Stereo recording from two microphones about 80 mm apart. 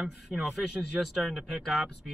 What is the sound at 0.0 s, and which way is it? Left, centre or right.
Speech, centre.